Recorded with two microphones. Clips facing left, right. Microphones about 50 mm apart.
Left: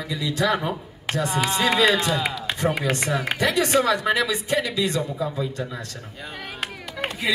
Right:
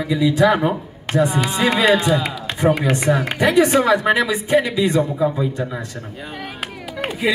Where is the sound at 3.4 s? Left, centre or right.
Right.